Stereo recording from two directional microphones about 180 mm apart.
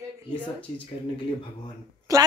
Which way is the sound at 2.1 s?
20° right (ahead or behind).